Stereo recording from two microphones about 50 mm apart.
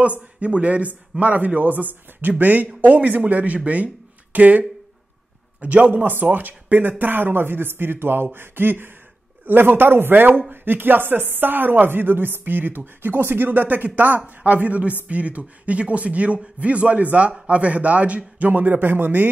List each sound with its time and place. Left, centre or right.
0.0 s speech: right